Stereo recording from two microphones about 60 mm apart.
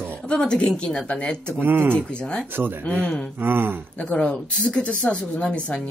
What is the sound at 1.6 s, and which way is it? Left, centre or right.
Speech, right.